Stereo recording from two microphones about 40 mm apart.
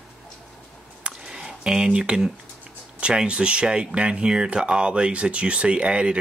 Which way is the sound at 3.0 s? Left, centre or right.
Right.